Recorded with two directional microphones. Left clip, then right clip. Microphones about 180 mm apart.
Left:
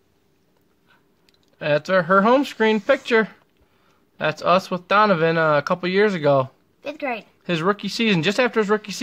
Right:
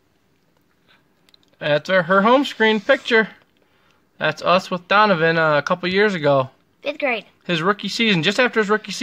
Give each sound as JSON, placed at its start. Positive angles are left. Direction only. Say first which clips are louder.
{"t": 1.2, "sound": "speech", "louder": "right 1 dB", "side_deg": 10}
{"t": 6.8, "sound": "a sound", "louder": "right 5 dB", "side_deg": -20}
{"t": 7.4, "sound": "speech", "louder": "right 1 dB", "side_deg": 5}